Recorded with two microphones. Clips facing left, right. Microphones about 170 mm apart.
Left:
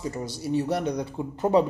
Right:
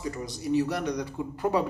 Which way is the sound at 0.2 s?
30° left (ahead or behind).